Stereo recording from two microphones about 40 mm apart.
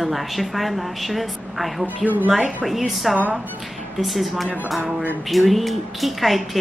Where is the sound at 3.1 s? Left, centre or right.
Right.